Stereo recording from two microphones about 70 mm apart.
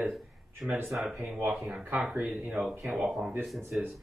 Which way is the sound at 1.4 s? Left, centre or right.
Centre.